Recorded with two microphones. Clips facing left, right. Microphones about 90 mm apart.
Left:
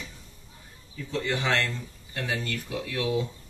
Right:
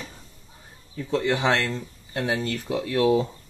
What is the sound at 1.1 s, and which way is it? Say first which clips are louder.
Speech: right 5 dB; 20° right (ahead or behind).